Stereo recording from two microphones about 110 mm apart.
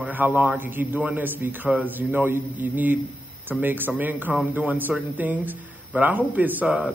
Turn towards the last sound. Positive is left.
turn(degrees=-10)  # may be behind; listen again after turning